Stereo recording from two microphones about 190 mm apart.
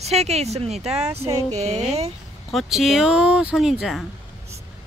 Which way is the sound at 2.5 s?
Centre (ahead or behind).